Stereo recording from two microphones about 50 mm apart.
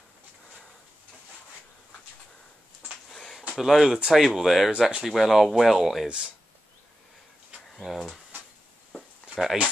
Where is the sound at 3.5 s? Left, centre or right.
Centre.